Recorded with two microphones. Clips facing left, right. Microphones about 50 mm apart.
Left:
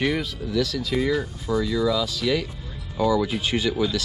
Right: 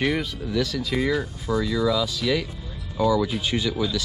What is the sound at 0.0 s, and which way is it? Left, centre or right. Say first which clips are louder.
Speech: even; centre.